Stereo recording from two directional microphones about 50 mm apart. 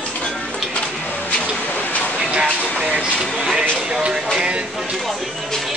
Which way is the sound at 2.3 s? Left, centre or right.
Right.